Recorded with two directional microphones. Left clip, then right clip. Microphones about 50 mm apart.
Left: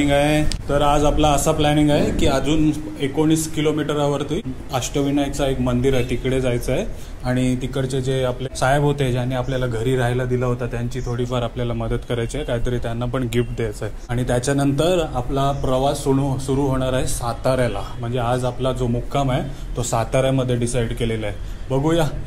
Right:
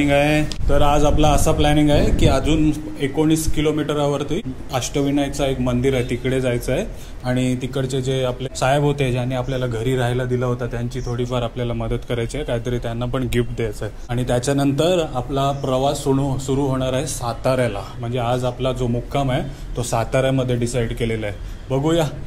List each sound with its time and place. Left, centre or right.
0.0 s a man's voice: right